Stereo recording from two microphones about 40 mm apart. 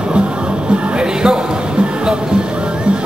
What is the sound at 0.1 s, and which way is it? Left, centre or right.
Music, right.